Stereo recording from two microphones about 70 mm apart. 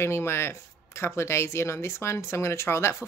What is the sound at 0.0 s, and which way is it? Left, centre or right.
Speech, left.